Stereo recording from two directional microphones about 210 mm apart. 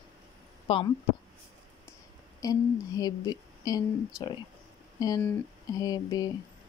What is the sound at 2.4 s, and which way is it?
A woman's voice, 20° left (ahead or behind).